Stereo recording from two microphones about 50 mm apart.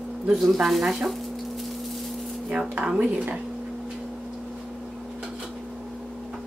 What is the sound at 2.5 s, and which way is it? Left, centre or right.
Speech, centre.